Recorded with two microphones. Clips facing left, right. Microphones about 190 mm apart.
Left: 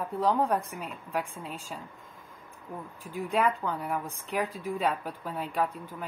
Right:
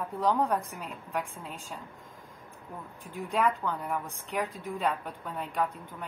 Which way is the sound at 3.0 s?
Centre (ahead or behind).